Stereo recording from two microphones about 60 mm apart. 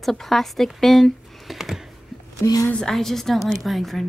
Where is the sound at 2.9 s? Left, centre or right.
Centre.